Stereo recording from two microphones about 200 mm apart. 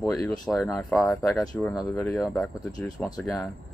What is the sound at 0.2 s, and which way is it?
Speech, 15° left (ahead or behind).